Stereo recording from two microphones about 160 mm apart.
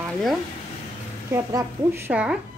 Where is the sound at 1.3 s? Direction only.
20° right (ahead or behind).